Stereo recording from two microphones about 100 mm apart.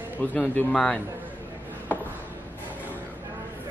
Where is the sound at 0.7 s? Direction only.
5° left (ahead or behind).